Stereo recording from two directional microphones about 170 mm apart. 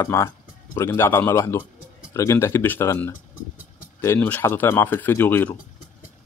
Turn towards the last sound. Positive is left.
turn(degrees=10)  # may be behind; listen again after turning